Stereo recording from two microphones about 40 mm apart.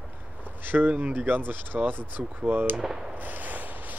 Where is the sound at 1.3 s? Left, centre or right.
Right.